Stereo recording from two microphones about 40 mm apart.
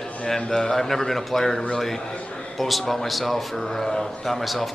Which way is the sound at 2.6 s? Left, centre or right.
Centre.